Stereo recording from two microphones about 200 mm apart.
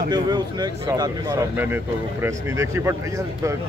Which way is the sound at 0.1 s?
20° right (ahead or behind).